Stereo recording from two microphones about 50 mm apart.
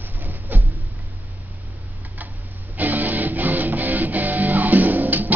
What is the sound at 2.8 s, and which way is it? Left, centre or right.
Music, right.